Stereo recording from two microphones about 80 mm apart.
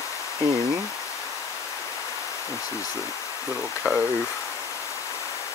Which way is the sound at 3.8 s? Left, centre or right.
Centre.